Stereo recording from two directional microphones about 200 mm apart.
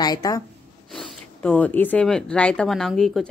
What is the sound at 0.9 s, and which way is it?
Speech, 5° left (ahead or behind).